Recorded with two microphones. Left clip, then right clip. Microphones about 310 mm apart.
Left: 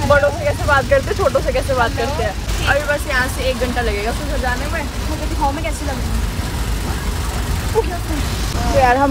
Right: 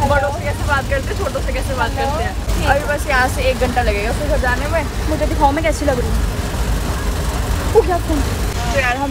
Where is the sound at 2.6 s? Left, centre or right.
Centre.